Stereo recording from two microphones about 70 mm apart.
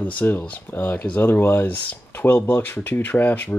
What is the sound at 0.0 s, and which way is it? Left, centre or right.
Speech, left.